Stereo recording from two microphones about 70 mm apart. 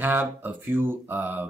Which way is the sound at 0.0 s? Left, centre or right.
Right.